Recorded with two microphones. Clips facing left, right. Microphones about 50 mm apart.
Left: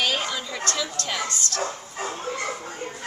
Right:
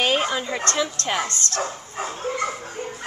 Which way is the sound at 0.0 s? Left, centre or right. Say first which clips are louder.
Right 4 dB; right.